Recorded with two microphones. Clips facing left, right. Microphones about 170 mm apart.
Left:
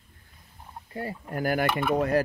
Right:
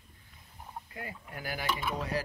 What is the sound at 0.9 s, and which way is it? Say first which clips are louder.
Speech: left 11 dB; 35° left (ahead or behind).